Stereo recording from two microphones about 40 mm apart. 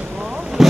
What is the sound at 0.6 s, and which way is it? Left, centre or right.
Vehicle, centre.